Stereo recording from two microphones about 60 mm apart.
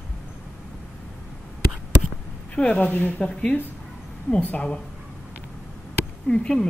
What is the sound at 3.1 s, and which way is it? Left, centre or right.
Speech, centre.